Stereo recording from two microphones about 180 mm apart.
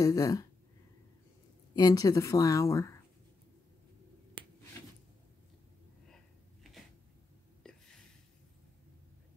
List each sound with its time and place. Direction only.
0.0 s speech: 20° left (ahead or behind)
1.8 s speech: 20° left (ahead or behind)
7.7 s a sound: 5° left (ahead or behind)